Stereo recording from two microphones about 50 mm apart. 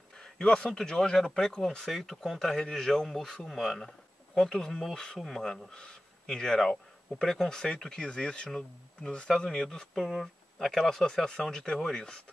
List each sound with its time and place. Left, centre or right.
0.4 s a man's voice: centre